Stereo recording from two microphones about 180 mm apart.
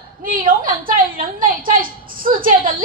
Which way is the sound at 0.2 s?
50° right (ahead or behind).